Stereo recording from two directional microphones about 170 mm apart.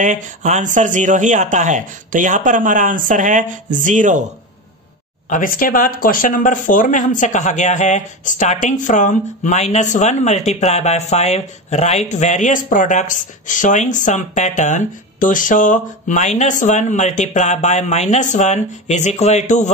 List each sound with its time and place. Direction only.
0.0 s speech: 45° right (ahead or behind)
5.3 s speech: 55° left (ahead or behind)